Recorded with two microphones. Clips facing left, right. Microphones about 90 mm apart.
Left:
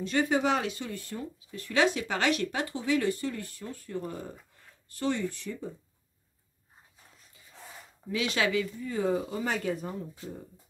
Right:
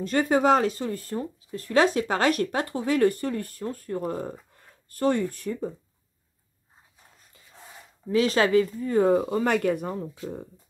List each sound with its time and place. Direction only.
0.0 s speech: 45° right (ahead or behind)
8.1 s speech: 40° right (ahead or behind); by 10.4 s 65° right (ahead or behind)